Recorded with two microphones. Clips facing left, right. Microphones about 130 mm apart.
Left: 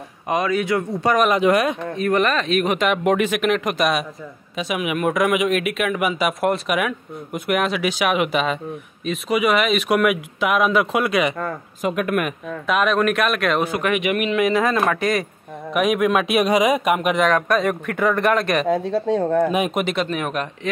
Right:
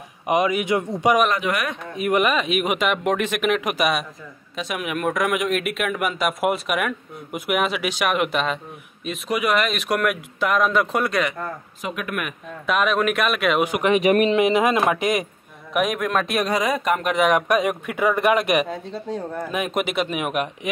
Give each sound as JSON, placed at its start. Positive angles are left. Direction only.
{"t": 0.3, "sound": "speech", "side_deg": -15}
{"t": 1.3, "sound": "speech", "side_deg": 30}
{"t": 2.0, "sound": "a man's voice", "side_deg": -15}
{"t": 11.8, "sound": "speech", "side_deg": 40}
{"t": 12.6, "sound": "a man's voice", "side_deg": 0}
{"t": 13.7, "sound": "speech", "side_deg": -20}
{"t": 13.9, "sound": "speech", "side_deg": -35}
{"t": 15.7, "sound": "speech", "side_deg": 0}
{"t": 17.2, "sound": "speech", "side_deg": -15}
{"t": 18.7, "sound": "speech", "side_deg": 85}
{"t": 19.7, "sound": "speech", "side_deg": -5}